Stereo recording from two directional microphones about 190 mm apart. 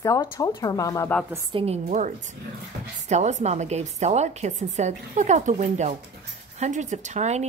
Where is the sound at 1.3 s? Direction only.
20° right (ahead or behind).